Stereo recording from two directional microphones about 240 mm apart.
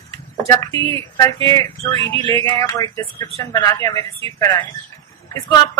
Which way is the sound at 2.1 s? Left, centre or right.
Right.